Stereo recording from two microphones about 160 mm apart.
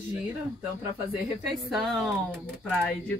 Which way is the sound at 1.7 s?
Centre (ahead or behind).